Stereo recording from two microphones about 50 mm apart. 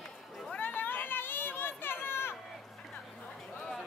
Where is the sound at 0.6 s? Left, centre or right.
Left.